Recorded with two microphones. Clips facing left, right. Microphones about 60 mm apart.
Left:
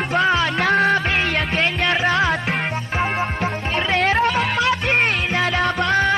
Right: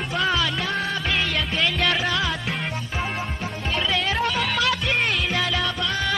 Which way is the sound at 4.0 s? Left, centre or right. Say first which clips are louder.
Left 6 dB; left.